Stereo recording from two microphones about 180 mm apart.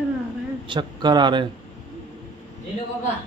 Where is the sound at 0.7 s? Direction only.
25° right (ahead or behind).